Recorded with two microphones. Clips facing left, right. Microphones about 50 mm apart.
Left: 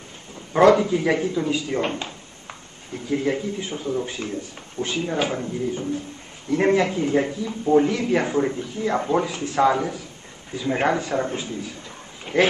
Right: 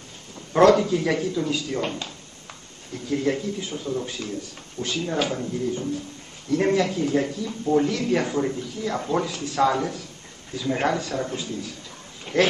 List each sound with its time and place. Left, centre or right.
0.5 s speech: centre